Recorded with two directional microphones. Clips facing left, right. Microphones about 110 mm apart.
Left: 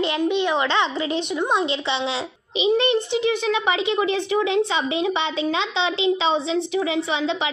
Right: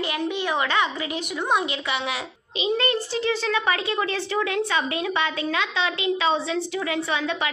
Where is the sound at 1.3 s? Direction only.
15° left (ahead or behind).